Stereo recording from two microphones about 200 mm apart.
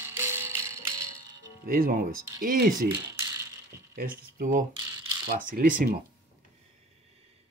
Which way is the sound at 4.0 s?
45° right (ahead or behind).